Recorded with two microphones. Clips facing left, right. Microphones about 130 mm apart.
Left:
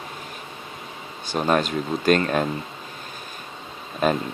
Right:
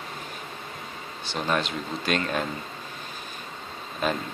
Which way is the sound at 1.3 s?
45° left (ahead or behind).